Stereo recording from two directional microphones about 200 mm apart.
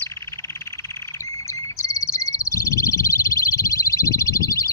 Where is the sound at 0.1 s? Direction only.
15° left (ahead or behind).